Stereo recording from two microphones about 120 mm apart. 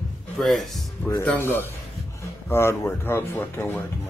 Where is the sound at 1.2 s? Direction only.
15° left (ahead or behind).